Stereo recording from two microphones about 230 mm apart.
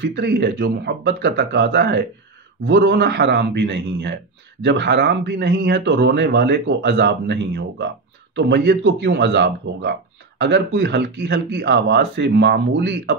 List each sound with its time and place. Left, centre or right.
0.0 s a man's voice: right